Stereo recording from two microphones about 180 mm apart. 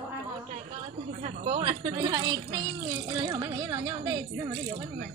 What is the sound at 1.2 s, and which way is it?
Speech, 40° right (ahead or behind).